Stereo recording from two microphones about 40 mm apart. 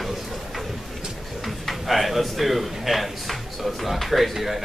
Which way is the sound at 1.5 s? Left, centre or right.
Centre.